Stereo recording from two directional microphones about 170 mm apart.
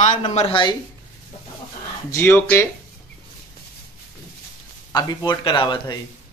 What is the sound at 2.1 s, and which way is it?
Speech, 15° left (ahead or behind).